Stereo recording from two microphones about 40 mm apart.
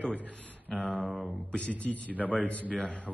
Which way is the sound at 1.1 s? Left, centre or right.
Centre.